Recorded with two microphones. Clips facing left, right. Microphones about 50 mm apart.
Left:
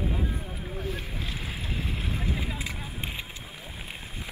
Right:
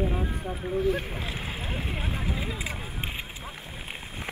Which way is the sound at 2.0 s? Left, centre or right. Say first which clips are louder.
Even; centre.